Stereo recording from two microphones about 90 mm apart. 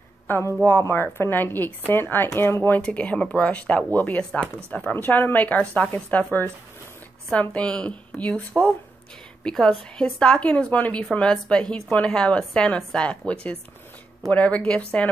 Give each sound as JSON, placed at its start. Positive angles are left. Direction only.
{"t": 0.7, "sound": "speech", "side_deg": 25}
{"t": 2.8, "sound": "a woman's voice", "side_deg": 15}